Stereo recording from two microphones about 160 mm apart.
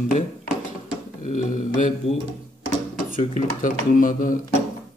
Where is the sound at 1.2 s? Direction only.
50° left (ahead or behind).